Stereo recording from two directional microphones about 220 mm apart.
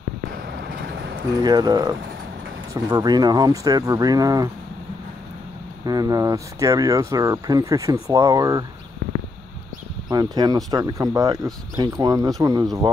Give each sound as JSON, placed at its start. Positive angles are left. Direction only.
{"t": 0.3, "sound": "vehicle", "side_deg": -45}
{"t": 1.4, "sound": "speech", "side_deg": -20}
{"t": 5.9, "sound": "speech", "side_deg": -15}
{"t": 9.0, "sound": "a sound", "side_deg": -45}
{"t": 10.0, "sound": "speech", "side_deg": -15}